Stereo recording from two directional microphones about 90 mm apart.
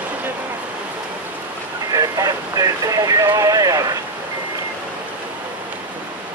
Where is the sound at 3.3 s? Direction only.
40° right (ahead or behind).